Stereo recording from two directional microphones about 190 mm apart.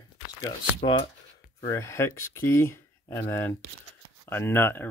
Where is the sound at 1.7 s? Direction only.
15° left (ahead or behind).